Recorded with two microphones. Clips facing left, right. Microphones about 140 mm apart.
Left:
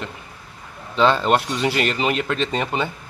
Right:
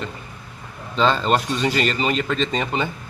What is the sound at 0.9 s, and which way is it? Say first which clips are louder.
Speech: left 2 dB; 10° left (ahead or behind).